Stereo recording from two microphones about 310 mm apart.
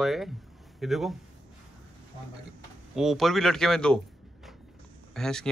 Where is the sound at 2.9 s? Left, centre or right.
Centre.